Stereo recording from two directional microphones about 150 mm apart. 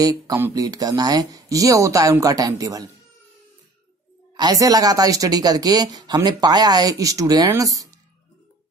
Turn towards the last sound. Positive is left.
turn(degrees=-25)  # may be behind; listen again after turning